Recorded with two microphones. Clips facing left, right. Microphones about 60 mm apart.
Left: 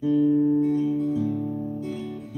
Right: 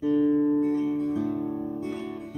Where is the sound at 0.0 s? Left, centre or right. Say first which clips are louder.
Left 2 dB; right.